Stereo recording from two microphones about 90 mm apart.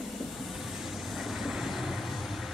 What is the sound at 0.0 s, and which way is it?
Train, centre (ahead or behind).